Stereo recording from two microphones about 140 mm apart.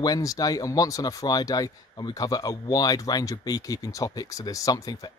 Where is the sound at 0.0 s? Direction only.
25° left (ahead or behind).